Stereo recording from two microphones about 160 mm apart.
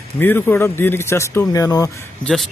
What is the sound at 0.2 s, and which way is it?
Speech, 10° left (ahead or behind).